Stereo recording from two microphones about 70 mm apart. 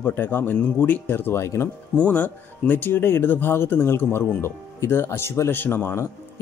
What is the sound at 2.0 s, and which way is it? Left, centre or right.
Speech, left.